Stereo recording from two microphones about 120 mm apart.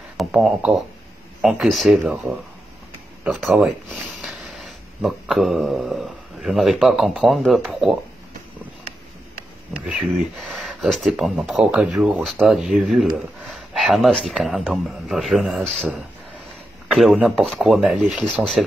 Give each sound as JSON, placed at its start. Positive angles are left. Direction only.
{"t": 0.2, "sound": "speech", "side_deg": 0}
{"t": 9.8, "sound": "speech", "side_deg": -5}